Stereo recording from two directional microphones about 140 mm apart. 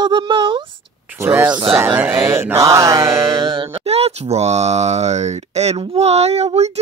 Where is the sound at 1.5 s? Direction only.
40° right (ahead or behind).